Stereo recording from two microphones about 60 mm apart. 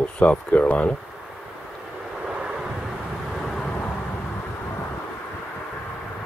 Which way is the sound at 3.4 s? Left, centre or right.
Centre.